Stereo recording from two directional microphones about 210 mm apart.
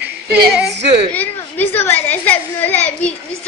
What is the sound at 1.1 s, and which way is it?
A child's voice, 10° left (ahead or behind).